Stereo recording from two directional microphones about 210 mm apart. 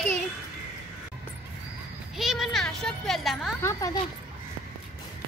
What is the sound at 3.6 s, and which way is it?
Speech, 15° left (ahead or behind).